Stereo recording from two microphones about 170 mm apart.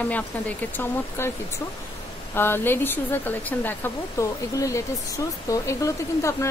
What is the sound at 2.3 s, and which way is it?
Speech, 15° left (ahead or behind).